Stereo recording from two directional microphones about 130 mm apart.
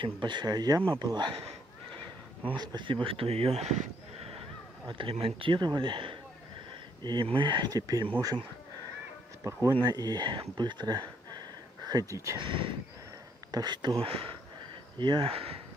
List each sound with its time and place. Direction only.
0.0 s speech: 35° right (ahead or behind)
2.5 s speech: 35° right (ahead or behind); by 4.4 s 60° right (ahead or behind)
4.8 s speech: 40° right (ahead or behind)
9.4 s speech: 20° right (ahead or behind)
10.6 s a sound: 35° right (ahead or behind)
12.4 s speech: 40° right (ahead or behind)